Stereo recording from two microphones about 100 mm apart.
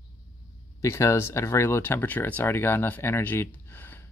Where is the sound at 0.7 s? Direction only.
30° left (ahead or behind).